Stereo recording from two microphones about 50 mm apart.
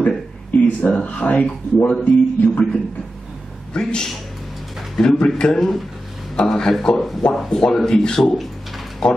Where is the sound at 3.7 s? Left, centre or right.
Centre.